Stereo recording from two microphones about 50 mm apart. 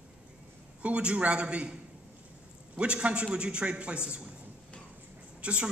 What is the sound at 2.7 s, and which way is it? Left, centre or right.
A woman's voice, right.